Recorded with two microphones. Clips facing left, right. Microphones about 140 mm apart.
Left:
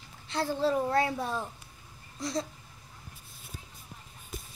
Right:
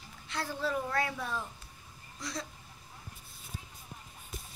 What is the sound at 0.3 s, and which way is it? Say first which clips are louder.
Child singing: left 6 dB; 30° left (ahead or behind).